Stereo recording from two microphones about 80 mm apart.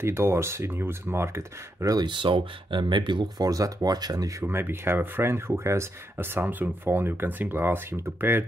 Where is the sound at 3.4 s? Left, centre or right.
Right.